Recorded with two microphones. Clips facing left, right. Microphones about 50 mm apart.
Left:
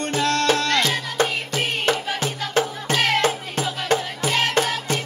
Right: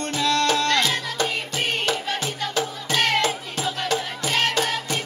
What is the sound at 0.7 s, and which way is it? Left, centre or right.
Music, centre.